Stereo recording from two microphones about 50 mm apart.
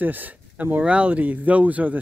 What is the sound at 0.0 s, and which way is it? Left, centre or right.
Speech, right.